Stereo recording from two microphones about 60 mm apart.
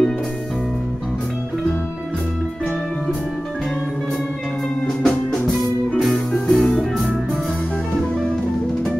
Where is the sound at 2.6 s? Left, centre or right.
Centre.